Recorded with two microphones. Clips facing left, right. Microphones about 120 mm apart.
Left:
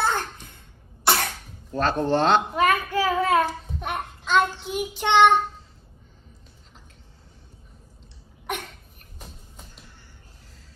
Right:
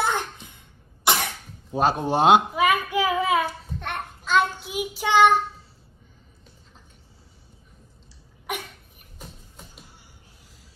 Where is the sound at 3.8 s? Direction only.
Centre (ahead or behind).